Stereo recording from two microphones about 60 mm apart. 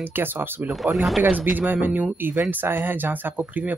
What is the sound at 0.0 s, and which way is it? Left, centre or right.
Speech, right.